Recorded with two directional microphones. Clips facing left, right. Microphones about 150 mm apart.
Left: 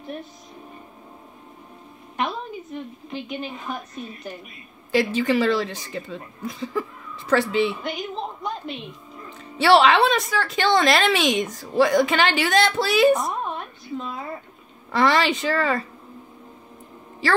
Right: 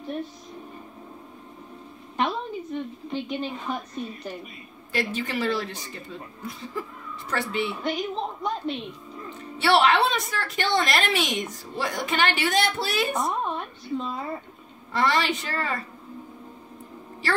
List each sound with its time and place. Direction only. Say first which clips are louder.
2.1 s a woman's voice: right 1 dB; centre (ahead or behind)
4.9 s a woman's voice: left 8 dB; 90° left
7.8 s a woman's voice: right 1 dB; centre (ahead or behind)
9.6 s a woman's voice: left 4 dB; 90° left
13.1 s speech: left 4 dB; centre (ahead or behind)
14.9 s a woman's voice: left 4 dB; 90° left